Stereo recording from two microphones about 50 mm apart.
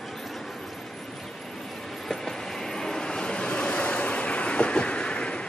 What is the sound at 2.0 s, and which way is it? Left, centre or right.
Vehicle, centre.